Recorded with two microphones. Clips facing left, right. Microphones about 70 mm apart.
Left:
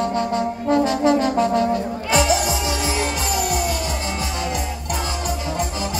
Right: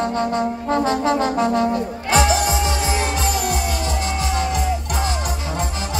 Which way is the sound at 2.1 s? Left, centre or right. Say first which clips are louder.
Right 2 dB; right.